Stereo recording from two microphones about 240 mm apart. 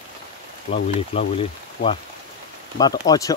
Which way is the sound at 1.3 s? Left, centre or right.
Left.